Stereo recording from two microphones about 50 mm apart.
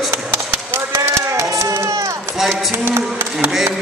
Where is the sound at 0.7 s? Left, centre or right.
Right.